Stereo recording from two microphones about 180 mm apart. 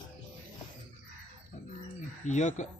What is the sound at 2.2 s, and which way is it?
Speech, 40° left (ahead or behind).